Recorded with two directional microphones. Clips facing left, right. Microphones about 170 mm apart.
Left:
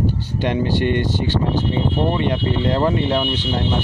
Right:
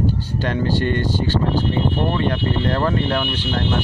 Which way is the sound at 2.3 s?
15° left (ahead or behind).